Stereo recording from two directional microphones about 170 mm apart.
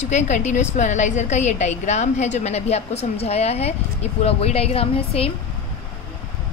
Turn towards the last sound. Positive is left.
turn(degrees=35)  # may be behind; listen again after turning